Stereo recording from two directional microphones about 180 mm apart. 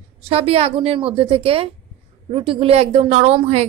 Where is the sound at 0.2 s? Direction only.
30° right (ahead or behind).